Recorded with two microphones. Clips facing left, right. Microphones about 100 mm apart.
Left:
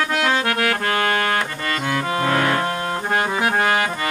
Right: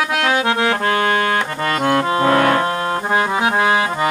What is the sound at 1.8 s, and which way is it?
Music, 45° right (ahead or behind).